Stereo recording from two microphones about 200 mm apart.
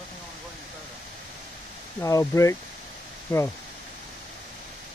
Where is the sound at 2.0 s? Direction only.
15° left (ahead or behind).